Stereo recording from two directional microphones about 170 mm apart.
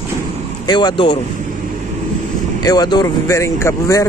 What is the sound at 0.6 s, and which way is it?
Speech, 25° left (ahead or behind).